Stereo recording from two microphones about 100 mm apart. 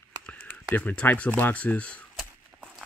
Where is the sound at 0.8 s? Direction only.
15° left (ahead or behind).